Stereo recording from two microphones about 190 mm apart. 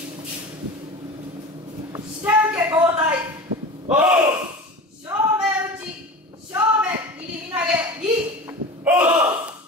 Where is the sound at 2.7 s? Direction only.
10° right (ahead or behind).